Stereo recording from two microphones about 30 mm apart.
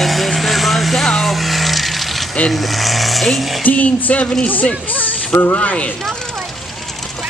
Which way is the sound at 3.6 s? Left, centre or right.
Left.